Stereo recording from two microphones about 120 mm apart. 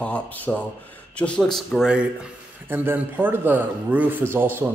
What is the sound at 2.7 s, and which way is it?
A man's voice, 15° right (ahead or behind).